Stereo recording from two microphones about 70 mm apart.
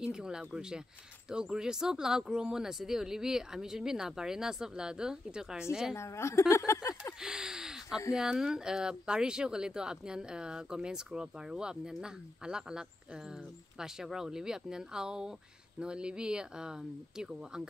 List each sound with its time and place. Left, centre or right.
0.0 s speech: centre
5.9 s a woman's voice: left
7.2 s a sound: centre
8.1 s speech: centre